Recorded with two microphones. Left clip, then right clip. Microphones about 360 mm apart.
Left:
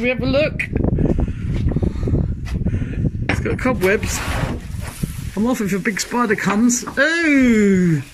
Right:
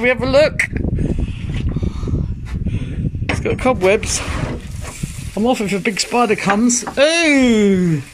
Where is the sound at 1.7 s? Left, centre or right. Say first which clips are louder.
Left 5 dB; left.